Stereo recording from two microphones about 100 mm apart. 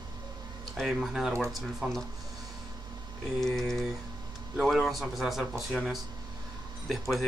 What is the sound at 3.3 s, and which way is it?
Speech, 5° left (ahead or behind).